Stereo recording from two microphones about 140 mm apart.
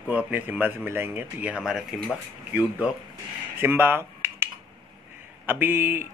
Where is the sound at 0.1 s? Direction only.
10° right (ahead or behind).